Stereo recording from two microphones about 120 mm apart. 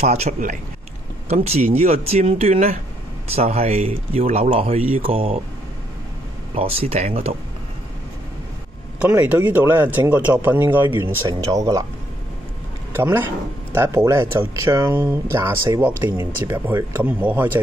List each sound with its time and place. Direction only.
0.0 s speech: 65° right (ahead or behind)
1.3 s speech: 65° right (ahead or behind)
6.5 s speech: 55° right (ahead or behind)
9.0 s speech: 15° right (ahead or behind)
12.9 s speech: 20° right (ahead or behind)